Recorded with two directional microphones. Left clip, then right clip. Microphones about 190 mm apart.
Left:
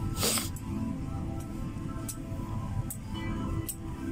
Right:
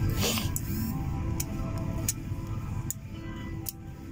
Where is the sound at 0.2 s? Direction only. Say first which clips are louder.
Even; 25° left (ahead or behind).